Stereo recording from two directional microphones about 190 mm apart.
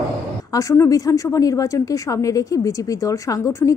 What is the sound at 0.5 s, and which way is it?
A woman's voice, 15° left (ahead or behind).